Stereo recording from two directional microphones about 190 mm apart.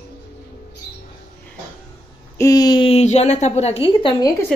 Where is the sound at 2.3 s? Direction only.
20° left (ahead or behind).